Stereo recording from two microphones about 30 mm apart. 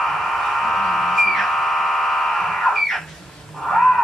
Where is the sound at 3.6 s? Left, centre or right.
Centre.